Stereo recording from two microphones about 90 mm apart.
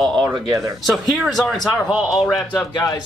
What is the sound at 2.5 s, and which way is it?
Speech, 45° left (ahead or behind).